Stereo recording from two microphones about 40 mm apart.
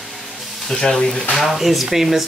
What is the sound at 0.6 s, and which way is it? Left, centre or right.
Speech, centre.